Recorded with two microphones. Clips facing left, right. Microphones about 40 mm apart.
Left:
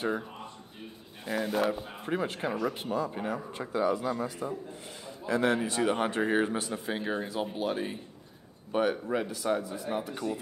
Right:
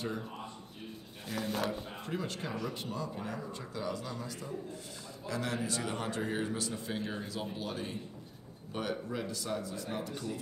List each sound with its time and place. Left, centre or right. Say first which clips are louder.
1.2 s speech: left 6 dB; centre
2.0 s speech: left 8 dB; left